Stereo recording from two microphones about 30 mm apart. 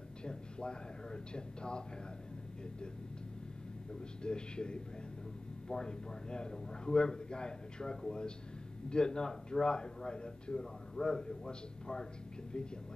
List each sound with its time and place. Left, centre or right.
0.2 s a man's voice: left
4.2 s a man's voice: left